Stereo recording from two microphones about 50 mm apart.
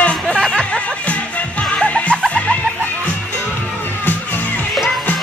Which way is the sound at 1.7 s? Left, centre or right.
Left.